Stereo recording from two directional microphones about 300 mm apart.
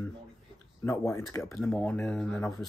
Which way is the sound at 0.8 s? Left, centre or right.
Centre.